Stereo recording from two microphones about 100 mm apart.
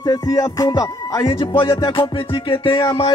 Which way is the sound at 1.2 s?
60° left (ahead or behind).